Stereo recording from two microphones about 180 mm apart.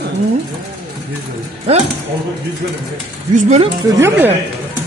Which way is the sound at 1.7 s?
35° right (ahead or behind).